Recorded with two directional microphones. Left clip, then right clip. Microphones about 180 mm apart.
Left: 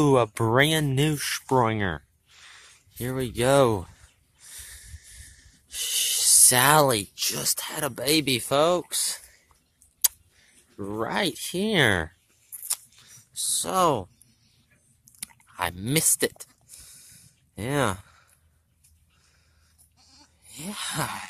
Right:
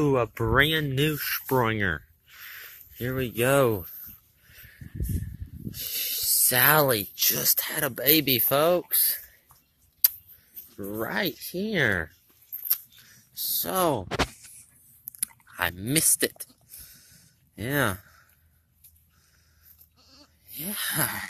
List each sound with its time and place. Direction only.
0.0 s speech: 25° left (ahead or behind)
1.5 s a sound: 15° left (ahead or behind)
5.7 s speech: 30° left (ahead or behind)
7.2 s speech: centre (ahead or behind)
10.8 s speech: 20° left (ahead or behind)
13.3 s a sound: 10° left (ahead or behind)
15.1 s chewing: 10° left (ahead or behind)
15.5 s speech: 15° left (ahead or behind)
15.8 s a sound: 20° left (ahead or behind)
17.6 s speech: 15° left (ahead or behind)
20.0 s goat: centre (ahead or behind)
20.4 s a sound: 15° left (ahead or behind)